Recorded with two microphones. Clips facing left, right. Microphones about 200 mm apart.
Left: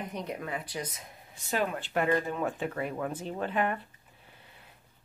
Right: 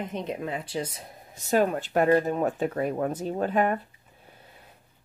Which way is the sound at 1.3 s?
45° right (ahead or behind).